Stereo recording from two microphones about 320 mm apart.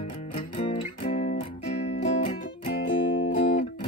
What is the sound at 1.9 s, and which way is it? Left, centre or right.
Music, centre.